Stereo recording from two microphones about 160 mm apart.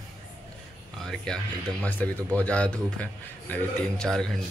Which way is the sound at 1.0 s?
5° left (ahead or behind).